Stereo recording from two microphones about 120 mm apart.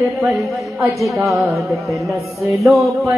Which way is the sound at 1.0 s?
Centre (ahead or behind).